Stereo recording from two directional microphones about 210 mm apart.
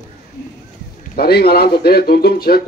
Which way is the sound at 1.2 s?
50° left (ahead or behind).